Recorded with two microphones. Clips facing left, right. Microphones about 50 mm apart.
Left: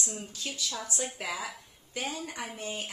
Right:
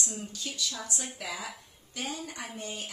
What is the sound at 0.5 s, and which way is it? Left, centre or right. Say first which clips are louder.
Speech: left 1 dB; left.